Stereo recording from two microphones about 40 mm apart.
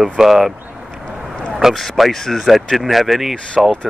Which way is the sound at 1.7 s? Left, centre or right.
Centre.